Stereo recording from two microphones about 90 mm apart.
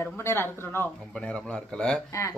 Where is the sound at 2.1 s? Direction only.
35° left (ahead or behind).